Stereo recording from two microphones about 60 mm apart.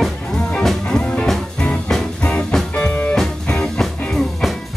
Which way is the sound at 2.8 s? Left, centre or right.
Left.